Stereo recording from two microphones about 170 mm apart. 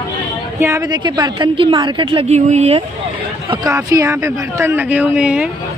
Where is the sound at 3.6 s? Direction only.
20° right (ahead or behind).